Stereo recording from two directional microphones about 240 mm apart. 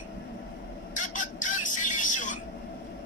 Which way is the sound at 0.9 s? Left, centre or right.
Left.